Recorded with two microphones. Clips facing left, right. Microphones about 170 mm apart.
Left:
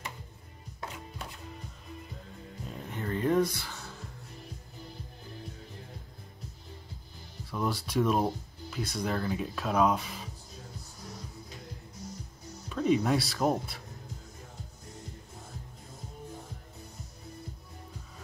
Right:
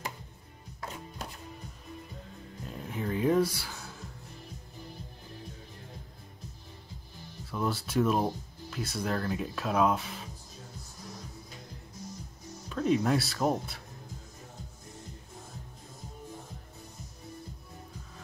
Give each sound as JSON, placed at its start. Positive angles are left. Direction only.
{"t": 2.6, "sound": "music", "side_deg": 0}
{"t": 7.5, "sound": "speech", "side_deg": 0}
{"t": 12.6, "sound": "speech", "side_deg": 0}